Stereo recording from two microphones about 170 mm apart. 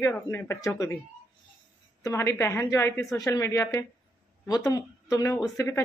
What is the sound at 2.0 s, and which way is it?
Speech, 15° left (ahead or behind).